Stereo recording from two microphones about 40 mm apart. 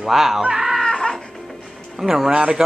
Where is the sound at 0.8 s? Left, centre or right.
Centre.